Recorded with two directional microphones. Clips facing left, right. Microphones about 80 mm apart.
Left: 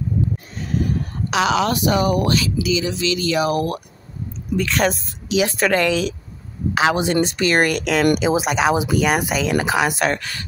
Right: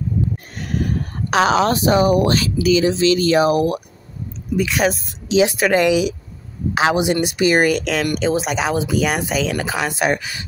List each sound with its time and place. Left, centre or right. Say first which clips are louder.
0.6 s a sound: even; right
1.3 s speech: right 3 dB; right
2.3 s speech: right 4 dB; right
3.4 s speech: right 4 dB; right
4.6 s speech: right 1 dB; centre
7.6 s speech: left 1 dB; centre
10.0 s speech: right 2 dB; centre